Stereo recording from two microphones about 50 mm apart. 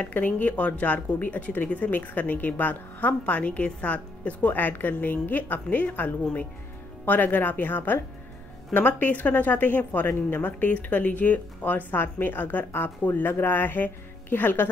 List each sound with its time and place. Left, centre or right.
0.0 s speech: left